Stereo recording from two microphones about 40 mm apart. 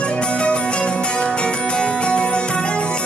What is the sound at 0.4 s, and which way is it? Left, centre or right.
Music, left.